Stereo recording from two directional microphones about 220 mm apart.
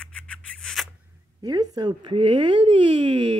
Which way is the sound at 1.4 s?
15° right (ahead or behind).